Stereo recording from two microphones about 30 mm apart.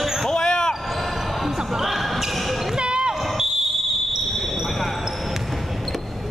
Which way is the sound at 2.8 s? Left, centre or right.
Right.